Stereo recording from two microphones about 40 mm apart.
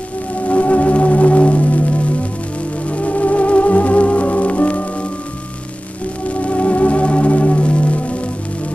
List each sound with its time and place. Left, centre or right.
0.5 s music: left
6.2 s music: left